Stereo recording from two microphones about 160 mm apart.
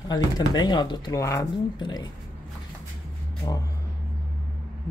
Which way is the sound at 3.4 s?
25° left (ahead or behind).